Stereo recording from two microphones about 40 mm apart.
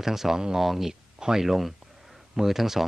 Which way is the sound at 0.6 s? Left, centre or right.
Centre.